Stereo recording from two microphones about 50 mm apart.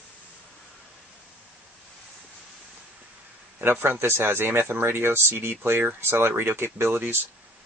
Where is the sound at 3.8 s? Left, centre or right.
Right.